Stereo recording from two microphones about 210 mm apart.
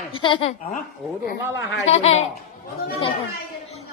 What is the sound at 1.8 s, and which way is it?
Speech, 30° left (ahead or behind).